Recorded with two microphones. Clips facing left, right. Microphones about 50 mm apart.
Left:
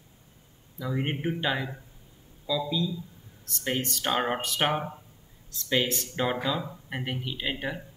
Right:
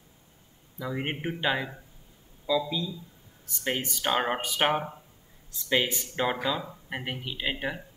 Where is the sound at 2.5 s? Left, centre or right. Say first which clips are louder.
Right 3 dB; right.